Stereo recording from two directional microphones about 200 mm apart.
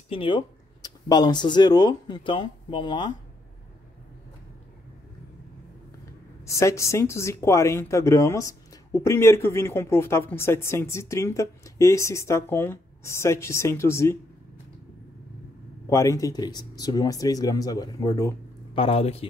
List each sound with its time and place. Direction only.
0.1 s speech: 25° left (ahead or behind)
6.4 s speech: 15° left (ahead or behind)
15.9 s speech: 15° left (ahead or behind)